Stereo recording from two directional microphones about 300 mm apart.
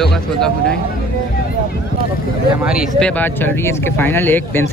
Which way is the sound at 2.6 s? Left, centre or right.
Centre.